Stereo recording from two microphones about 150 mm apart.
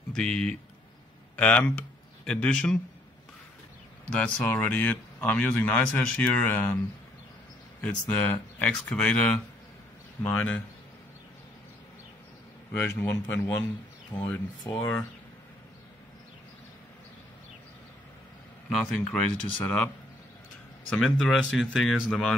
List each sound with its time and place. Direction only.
0.1 s speech: 5° left (ahead or behind)
4.1 s speech: 10° left (ahead or behind)
7.8 s speech: 10° left (ahead or behind)
12.7 s speech: 15° left (ahead or behind)
14.1 s speech: 30° left (ahead or behind)
14.8 s speech: 15° left (ahead or behind)
18.7 s speech: 5° left (ahead or behind)
20.9 s speech: centre (ahead or behind)